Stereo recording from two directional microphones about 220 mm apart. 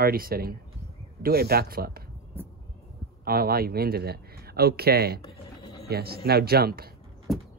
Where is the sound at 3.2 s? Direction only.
45° right (ahead or behind).